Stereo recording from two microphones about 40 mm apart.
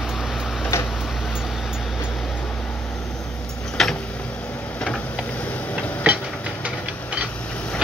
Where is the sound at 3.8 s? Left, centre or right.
Centre.